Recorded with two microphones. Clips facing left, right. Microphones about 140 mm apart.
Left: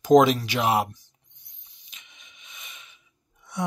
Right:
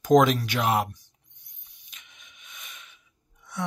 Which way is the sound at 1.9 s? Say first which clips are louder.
Even; 5° left (ahead or behind).